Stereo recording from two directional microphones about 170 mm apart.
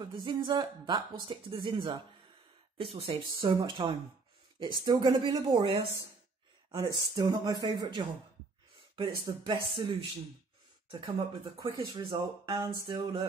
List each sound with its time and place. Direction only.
0.0 s speech: 25° right (ahead or behind)
9.2 s speech: 25° right (ahead or behind)